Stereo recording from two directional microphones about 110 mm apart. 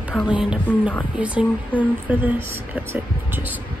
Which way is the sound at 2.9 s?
15° right (ahead or behind).